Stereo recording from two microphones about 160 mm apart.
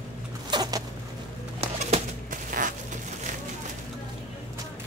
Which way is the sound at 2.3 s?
55° right (ahead or behind).